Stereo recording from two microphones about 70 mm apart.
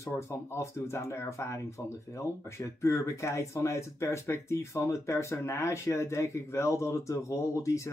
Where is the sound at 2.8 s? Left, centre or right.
Left.